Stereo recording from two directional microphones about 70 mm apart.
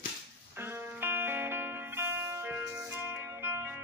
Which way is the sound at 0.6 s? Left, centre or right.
Right.